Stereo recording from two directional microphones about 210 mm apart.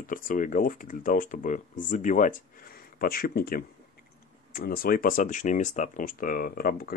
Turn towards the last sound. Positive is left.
turn(degrees=45)  # may be behind; listen again after turning